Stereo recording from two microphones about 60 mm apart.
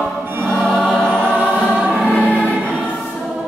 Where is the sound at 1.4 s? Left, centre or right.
Right.